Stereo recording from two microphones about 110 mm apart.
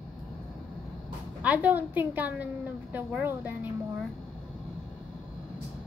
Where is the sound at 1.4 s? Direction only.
15° right (ahead or behind).